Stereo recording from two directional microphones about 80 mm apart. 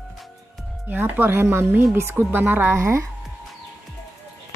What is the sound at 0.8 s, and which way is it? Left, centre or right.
Speech, right.